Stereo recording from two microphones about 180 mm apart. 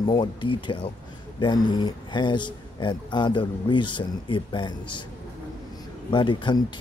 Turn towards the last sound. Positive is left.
turn(degrees=25)  # may be behind; listen again after turning